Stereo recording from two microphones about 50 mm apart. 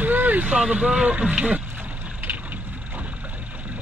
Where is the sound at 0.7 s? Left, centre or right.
Centre.